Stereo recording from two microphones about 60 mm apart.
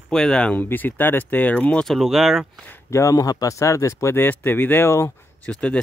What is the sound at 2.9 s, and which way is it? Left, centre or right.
Speech, left.